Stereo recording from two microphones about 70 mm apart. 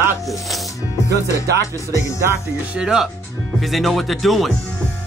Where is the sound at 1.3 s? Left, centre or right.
Left.